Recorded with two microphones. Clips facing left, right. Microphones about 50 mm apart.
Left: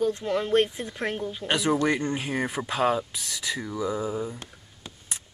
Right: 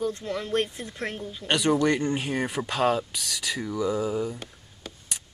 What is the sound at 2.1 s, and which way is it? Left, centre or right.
Speech, centre.